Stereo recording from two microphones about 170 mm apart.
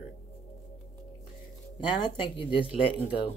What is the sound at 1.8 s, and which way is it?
Speech, 25° left (ahead or behind).